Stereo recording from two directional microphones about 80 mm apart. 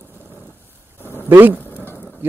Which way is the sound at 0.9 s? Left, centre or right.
Left.